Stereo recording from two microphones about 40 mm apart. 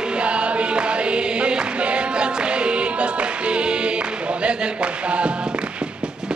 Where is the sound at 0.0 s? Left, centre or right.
Right.